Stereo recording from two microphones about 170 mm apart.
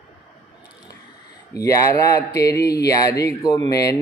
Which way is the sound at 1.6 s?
20° left (ahead or behind).